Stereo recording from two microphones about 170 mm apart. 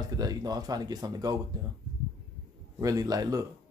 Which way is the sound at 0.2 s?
20° right (ahead or behind).